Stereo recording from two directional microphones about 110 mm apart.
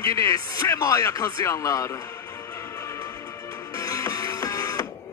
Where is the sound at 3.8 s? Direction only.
30° left (ahead or behind).